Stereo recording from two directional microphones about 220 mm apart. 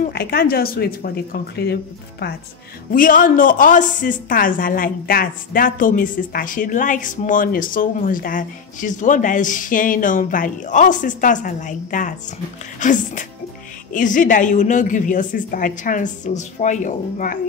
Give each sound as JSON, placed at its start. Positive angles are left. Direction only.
{"t": 0.0, "sound": "a woman's voice", "side_deg": 45}